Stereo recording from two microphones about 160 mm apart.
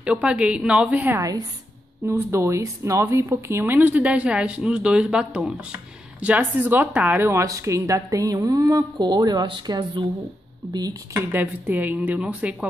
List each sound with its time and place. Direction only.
0.0 s speech: 5° right (ahead or behind); by 11.2 s 25° right (ahead or behind)
11.3 s speech: 10° right (ahead or behind)